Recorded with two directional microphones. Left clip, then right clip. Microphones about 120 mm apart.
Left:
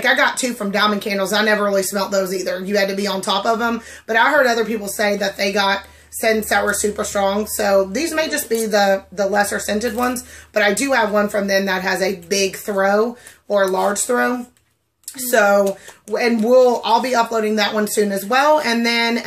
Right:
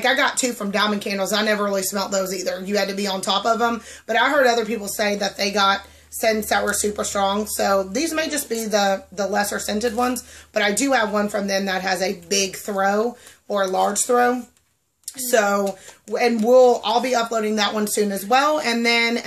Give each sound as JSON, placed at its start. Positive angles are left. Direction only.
{"t": 0.0, "sound": "speech", "side_deg": -25}